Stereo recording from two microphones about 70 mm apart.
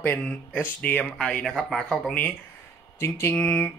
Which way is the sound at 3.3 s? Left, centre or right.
Left.